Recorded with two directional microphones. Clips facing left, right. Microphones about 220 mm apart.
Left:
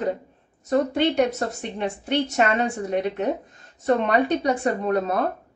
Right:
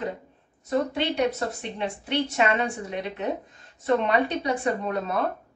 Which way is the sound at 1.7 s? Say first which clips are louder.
Left 4 dB; 45° left (ahead or behind).